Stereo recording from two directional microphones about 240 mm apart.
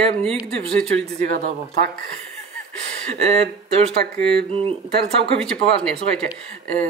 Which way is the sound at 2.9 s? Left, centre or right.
Right.